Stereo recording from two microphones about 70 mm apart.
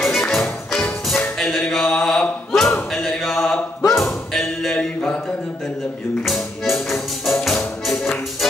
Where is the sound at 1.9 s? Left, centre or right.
Centre.